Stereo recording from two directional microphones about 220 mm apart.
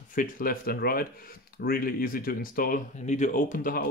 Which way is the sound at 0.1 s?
40° left (ahead or behind).